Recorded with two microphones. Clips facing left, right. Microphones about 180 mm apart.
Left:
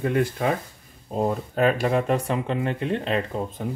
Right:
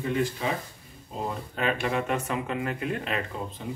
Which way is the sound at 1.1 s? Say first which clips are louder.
Left 8 dB; 45° left (ahead or behind).